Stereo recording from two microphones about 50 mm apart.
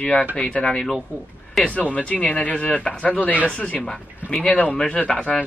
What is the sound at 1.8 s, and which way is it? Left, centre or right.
Speech, left.